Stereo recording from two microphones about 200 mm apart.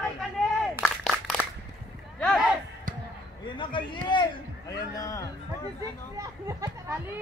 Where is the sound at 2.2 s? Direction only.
Centre (ahead or behind).